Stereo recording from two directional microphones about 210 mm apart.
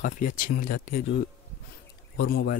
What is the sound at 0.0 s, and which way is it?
Speech, 40° left (ahead or behind).